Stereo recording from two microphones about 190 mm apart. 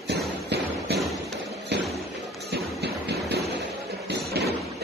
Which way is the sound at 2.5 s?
60° right (ahead or behind).